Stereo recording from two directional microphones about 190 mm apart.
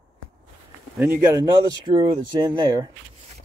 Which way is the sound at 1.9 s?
25° right (ahead or behind).